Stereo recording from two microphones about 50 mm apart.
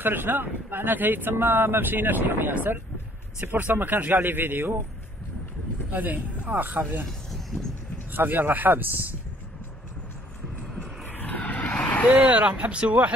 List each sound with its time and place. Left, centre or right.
0.0 s speech: right
5.9 s speech: right
7.1 s a sound: centre
8.1 s speech: right
11.1 s vehicle: left
12.1 s speech: right